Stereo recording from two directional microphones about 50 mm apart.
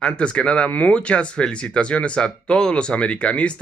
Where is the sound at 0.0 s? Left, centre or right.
Left.